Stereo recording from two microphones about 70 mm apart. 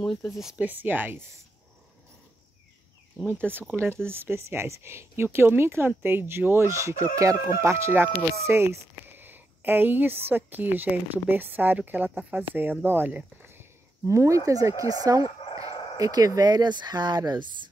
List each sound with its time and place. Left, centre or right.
0.0 s speech: centre
0.6 s speech: right
3.7 s speech: right